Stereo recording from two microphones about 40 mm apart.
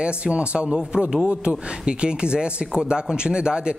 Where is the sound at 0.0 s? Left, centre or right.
Right.